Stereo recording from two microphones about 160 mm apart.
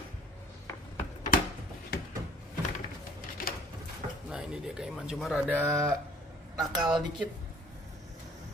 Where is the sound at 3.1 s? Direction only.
65° left (ahead or behind).